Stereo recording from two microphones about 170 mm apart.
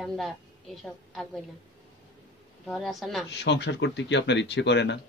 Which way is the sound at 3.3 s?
90° left.